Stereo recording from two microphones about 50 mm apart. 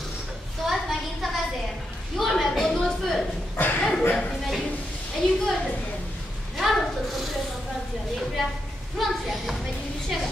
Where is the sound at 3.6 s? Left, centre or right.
Left.